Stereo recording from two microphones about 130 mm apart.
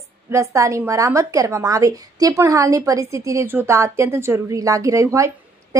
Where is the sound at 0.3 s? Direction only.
25° right (ahead or behind).